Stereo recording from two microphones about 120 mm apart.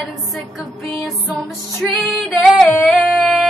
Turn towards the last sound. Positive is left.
turn(degrees=5)  # may be behind; listen again after turning